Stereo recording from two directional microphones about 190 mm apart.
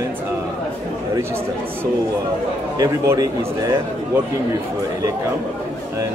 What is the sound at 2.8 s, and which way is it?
Speech, 15° right (ahead or behind).